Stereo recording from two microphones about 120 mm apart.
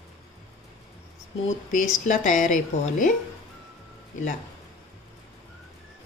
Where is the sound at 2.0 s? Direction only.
90° left.